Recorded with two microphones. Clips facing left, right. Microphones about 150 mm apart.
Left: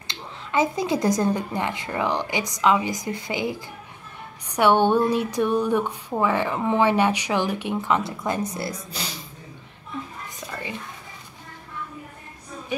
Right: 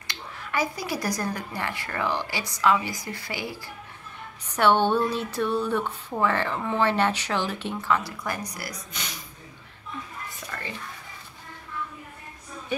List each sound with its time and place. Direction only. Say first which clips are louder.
0.0 s speech: left 1 dB; 25° left (ahead or behind)